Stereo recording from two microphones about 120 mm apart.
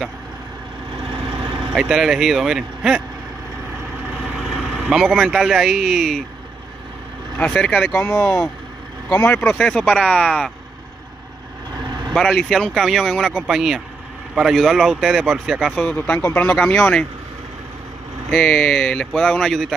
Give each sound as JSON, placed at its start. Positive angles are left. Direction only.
{"t": 1.7, "sound": "a man's voice", "side_deg": -5}
{"t": 4.4, "sound": "speech", "side_deg": -5}
{"t": 7.3, "sound": "speech", "side_deg": 10}
{"t": 9.1, "sound": "speech", "side_deg": 15}
{"t": 9.5, "sound": "a man's voice", "side_deg": 5}
{"t": 12.1, "sound": "a man's voice", "side_deg": 5}
{"t": 18.3, "sound": "a man's voice", "side_deg": 5}